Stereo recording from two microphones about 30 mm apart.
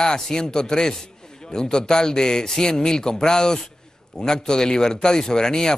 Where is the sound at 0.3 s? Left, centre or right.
Left.